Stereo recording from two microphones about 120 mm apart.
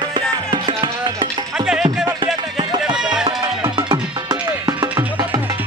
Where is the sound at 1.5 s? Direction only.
5° right (ahead or behind).